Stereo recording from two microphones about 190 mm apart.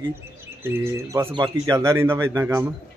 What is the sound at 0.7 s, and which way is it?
Speech, 15° right (ahead or behind).